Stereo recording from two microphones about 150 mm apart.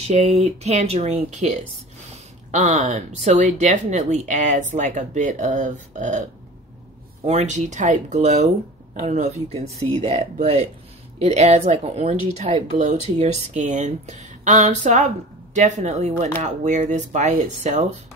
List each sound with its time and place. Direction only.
0.0 s speech: 45° right (ahead or behind)
7.2 s speech: 50° right (ahead or behind)